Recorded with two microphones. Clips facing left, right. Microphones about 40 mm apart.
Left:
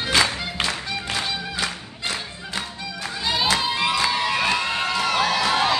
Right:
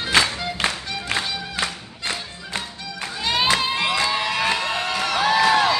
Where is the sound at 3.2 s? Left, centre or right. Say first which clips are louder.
Right 2 dB; right.